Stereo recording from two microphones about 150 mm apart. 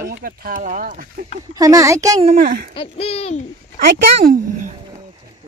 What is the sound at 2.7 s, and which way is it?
Hoot, 40° left (ahead or behind).